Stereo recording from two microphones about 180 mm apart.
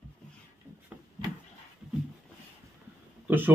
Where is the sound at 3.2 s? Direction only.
10° right (ahead or behind).